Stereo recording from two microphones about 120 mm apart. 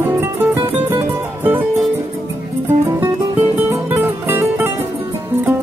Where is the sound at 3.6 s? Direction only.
15° right (ahead or behind).